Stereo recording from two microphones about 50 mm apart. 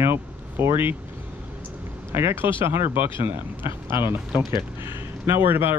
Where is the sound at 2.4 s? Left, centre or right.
Right.